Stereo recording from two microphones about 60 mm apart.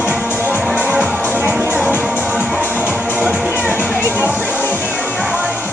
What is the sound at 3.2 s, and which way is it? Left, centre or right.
Music, right.